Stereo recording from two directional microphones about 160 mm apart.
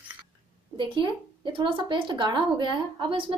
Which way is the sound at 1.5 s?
30° right (ahead or behind).